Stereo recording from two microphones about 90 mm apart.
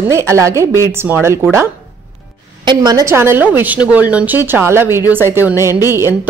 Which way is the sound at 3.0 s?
30° right (ahead or behind).